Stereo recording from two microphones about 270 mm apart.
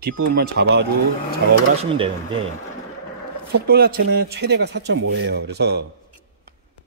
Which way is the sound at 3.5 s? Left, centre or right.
Right.